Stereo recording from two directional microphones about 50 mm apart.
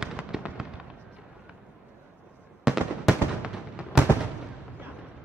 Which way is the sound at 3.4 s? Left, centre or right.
Right.